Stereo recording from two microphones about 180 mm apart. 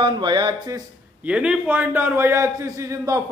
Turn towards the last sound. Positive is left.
turn(degrees=-15)  # may be behind; listen again after turning